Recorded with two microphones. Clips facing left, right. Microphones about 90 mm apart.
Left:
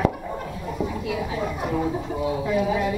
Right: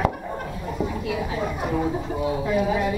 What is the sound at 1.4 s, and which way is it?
Speech, 15° right (ahead or behind).